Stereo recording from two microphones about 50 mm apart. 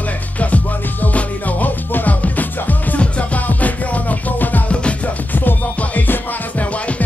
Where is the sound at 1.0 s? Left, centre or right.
Left.